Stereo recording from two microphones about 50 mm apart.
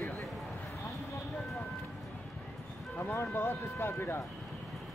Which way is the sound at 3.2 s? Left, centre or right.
Left.